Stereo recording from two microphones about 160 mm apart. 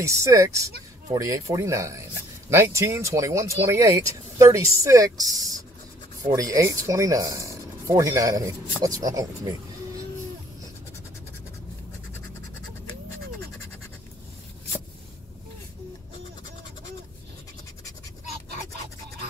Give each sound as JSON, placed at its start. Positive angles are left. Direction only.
{"t": 0.0, "sound": "speech", "side_deg": -20}